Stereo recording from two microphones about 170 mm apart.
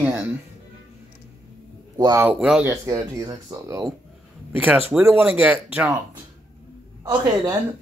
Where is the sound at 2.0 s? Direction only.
20° right (ahead or behind).